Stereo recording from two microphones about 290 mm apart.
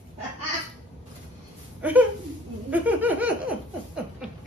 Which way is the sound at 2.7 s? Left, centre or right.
Centre.